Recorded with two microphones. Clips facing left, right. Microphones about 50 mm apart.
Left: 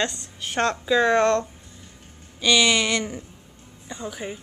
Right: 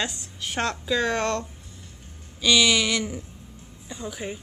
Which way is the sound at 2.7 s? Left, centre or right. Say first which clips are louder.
Left 1 dB; left.